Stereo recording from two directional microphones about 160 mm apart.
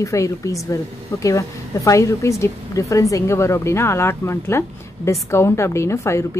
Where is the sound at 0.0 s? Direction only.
20° left (ahead or behind).